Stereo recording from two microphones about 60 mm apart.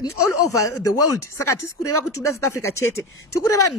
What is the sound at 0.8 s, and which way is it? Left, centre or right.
Speech, left.